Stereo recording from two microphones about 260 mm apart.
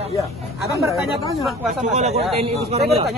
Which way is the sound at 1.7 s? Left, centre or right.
Right.